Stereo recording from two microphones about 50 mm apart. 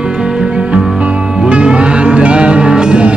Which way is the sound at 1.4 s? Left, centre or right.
Right.